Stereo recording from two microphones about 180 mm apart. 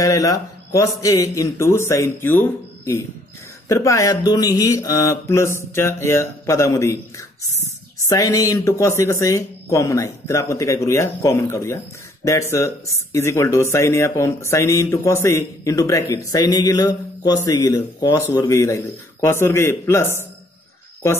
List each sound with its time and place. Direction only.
0.0 s speech: 20° left (ahead or behind)